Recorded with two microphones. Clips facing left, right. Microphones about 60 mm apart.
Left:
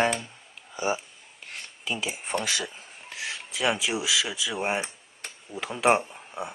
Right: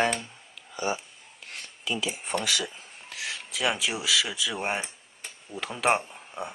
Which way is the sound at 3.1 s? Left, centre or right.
Left.